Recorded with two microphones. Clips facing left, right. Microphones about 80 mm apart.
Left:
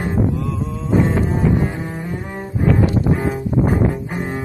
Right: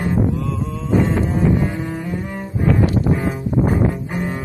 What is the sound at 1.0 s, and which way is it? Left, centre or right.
Double bass, left.